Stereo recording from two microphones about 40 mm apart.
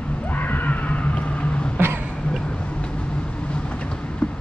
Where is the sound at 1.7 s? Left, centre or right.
Right.